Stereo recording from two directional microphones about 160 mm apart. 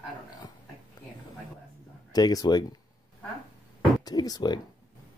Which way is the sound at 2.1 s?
25° left (ahead or behind).